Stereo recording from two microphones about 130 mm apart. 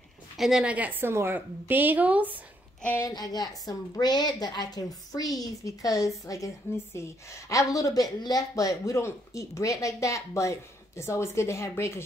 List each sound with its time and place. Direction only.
0.4 s a woman's voice: 5° right (ahead or behind)
2.8 s a woman's voice: 15° left (ahead or behind)
3.1 s a woman's voice: 30° left (ahead or behind)